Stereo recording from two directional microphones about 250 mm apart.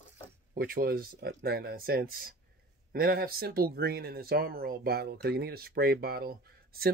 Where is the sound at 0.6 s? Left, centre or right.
Right.